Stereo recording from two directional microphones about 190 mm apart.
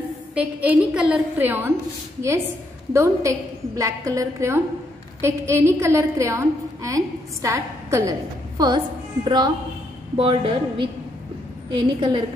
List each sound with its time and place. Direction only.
0.3 s a woman's voice: 5° right (ahead or behind)
2.9 s a woman's voice: 15° right (ahead or behind)